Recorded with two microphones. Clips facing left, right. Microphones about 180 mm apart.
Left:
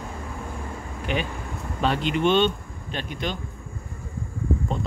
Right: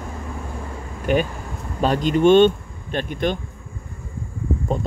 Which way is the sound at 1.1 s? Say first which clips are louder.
Right 8 dB; 45° right (ahead or behind).